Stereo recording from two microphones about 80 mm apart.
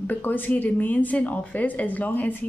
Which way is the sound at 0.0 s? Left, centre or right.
Left.